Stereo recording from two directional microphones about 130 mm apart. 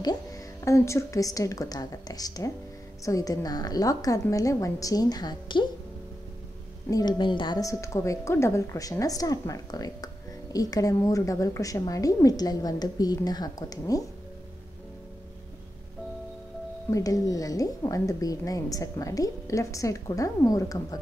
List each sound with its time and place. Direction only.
0.0 s a woman's voice: 30° left (ahead or behind)
6.9 s a woman's voice: 30° left (ahead or behind)
16.9 s a woman's voice: 25° left (ahead or behind)